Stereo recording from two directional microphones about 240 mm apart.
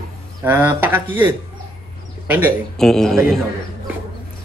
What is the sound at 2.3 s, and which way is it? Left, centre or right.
A man's voice, centre.